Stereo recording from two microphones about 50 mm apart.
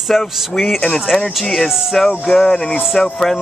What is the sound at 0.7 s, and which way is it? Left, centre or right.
Speech, centre.